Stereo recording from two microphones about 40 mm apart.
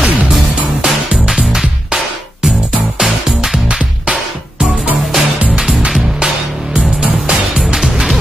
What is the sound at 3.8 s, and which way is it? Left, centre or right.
Music, right.